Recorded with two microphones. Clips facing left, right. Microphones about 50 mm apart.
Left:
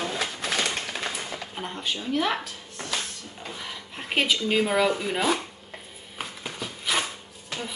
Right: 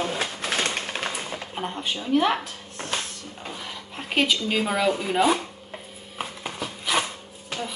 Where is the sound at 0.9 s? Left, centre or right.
Right.